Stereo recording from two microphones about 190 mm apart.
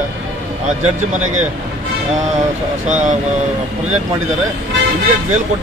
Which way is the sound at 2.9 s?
40° right (ahead or behind).